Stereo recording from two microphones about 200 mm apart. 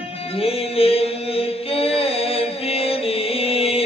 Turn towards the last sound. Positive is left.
turn(degrees=30)  # may be behind; listen again after turning